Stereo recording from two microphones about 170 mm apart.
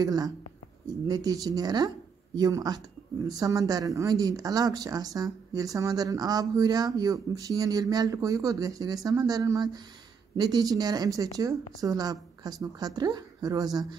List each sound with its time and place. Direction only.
0.0 s speech: 20° right (ahead or behind)